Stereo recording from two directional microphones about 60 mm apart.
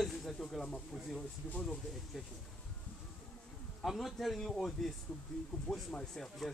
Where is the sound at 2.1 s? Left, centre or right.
Centre.